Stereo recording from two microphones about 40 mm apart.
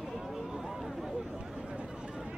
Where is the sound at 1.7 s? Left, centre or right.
Right.